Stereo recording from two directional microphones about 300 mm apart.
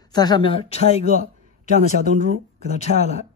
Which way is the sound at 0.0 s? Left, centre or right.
Centre.